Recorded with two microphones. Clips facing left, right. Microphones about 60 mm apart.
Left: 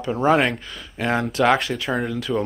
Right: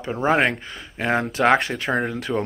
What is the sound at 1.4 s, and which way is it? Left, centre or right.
Speech, right.